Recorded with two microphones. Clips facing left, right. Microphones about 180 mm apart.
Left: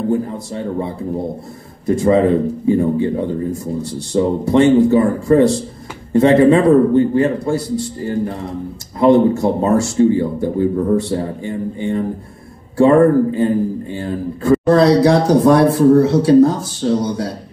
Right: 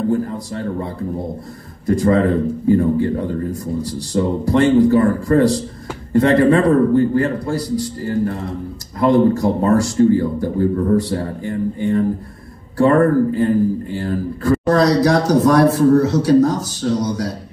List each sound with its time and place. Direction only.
1.9 s speech: 25° left (ahead or behind)